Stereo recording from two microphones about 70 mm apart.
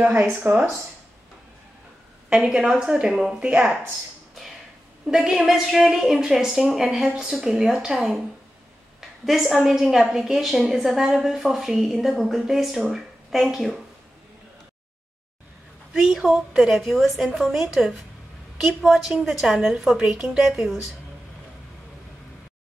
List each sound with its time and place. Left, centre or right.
0.5 s speech: right
2.3 s a woman's voice: centre
5.0 s a woman's voice: centre
15.9 s a woman's voice: centre